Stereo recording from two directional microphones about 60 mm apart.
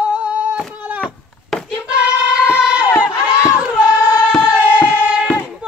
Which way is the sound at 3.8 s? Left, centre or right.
Centre.